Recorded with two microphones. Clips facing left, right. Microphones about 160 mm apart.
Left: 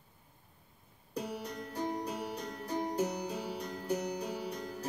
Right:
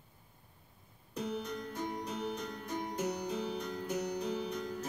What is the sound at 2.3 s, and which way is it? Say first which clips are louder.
Music: left 2 dB; 35° left (ahead or behind).